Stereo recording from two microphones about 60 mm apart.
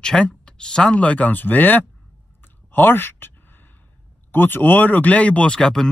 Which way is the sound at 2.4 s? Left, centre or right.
Left.